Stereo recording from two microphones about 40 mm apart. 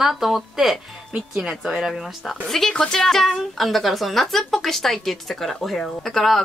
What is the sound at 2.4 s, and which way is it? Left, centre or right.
Speech, centre.